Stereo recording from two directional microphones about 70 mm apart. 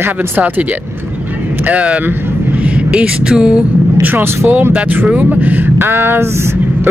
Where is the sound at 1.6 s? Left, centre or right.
Centre.